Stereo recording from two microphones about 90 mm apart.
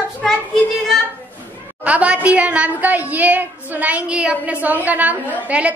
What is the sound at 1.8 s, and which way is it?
A woman's voice, 15° right (ahead or behind).